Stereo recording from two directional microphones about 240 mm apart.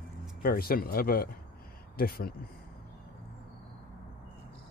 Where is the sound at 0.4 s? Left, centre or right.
Left.